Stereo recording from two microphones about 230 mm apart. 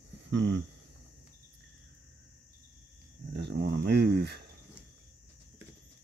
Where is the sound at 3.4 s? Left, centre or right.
Right.